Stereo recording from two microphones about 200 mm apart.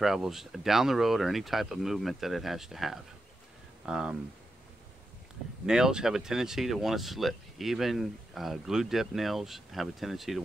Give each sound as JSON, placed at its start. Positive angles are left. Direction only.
{"t": 0.0, "sound": "speech", "side_deg": 0}
{"t": 5.7, "sound": "speech", "side_deg": -5}